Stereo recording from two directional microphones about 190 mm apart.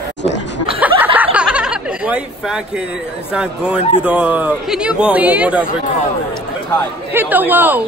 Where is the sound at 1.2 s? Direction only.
5° right (ahead or behind).